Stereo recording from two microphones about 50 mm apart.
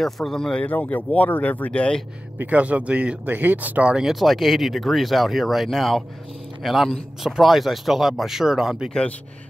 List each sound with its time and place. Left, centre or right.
0.0 s speech: centre
0.6 s speech: left
2.3 s speech: right
3.3 s speech: right
4.1 s speech: centre